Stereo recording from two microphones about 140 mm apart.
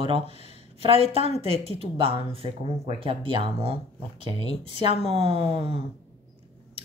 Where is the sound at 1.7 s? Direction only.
40° right (ahead or behind).